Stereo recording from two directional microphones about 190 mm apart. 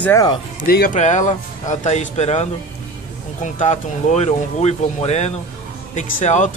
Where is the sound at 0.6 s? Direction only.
50° left (ahead or behind).